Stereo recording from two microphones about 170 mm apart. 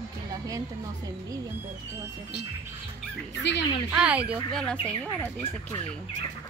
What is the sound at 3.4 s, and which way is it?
Speech, 90° left.